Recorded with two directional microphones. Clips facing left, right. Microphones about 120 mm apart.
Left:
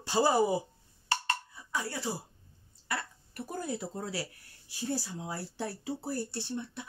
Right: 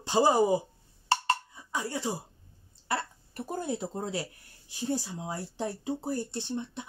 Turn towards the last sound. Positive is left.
turn(degrees=-20)  # may be behind; listen again after turning